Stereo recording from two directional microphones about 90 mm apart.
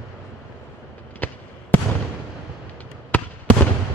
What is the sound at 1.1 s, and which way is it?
Fireworks, 20° left (ahead or behind).